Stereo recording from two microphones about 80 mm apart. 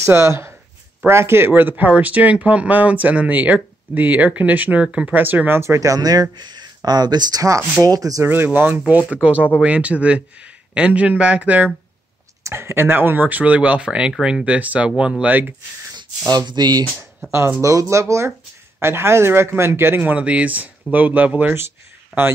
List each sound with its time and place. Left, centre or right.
0.0 s speech: right
5.6 s speech: right
6.3 s speech: right
7.8 s speech: right
8.5 s speech: right
12.4 s speech: right; by 15.3 s centre
16.3 s speech: right
17.3 s speech: right
22.1 s speech: centre